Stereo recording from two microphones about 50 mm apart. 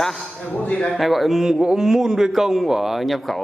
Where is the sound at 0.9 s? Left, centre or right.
Centre.